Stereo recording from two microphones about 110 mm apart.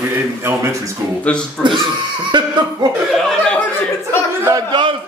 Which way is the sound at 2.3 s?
45° right (ahead or behind).